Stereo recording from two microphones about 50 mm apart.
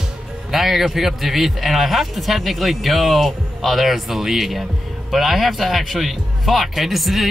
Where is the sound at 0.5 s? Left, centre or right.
Centre.